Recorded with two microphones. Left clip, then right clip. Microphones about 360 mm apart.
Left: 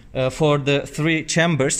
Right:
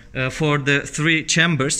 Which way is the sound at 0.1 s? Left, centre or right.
Centre.